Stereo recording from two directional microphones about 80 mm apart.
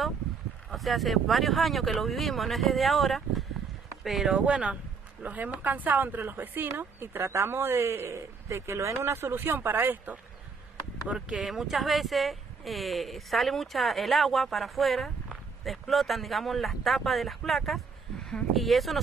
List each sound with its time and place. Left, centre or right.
0.7 s a woman's voice: centre; by 10.1 s right
11.1 s speech: centre